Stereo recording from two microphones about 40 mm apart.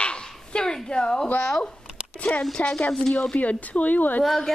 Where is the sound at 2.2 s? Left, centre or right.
Left.